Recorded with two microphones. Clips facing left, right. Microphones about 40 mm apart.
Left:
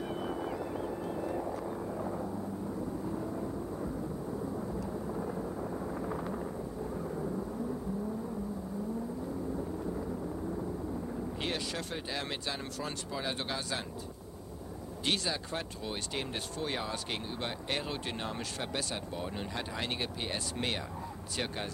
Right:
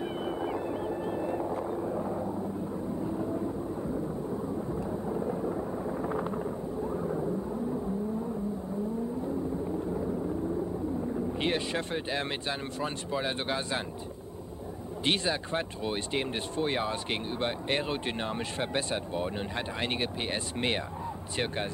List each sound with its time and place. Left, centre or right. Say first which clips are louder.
0.0 s boat: right 3 dB; centre
1.6 s a sound: right 5 dB; centre
3.1 s vehicle: right 5 dB; centre
6.3 s a sound: right 5 dB; centre
11.3 s speech: right 6 dB; right
15.0 s speech: right 4 dB; right